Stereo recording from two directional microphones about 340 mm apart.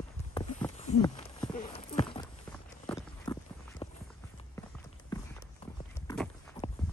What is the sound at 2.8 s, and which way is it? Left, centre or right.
Clip-clop, centre.